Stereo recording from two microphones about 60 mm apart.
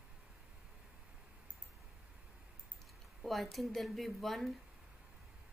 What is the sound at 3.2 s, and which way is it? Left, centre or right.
Speech, centre.